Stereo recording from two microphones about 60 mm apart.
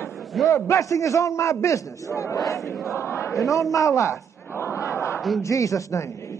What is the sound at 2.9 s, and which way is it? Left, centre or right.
Battle cry, left.